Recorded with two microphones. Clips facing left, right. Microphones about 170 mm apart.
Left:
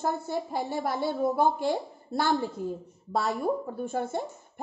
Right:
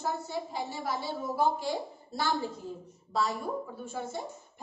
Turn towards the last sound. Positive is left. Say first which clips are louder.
# left 7 dB
turn(degrees=55)  # may be behind; listen again after turning